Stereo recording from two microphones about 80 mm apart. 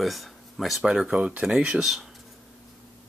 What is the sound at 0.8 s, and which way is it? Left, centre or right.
Speech, centre.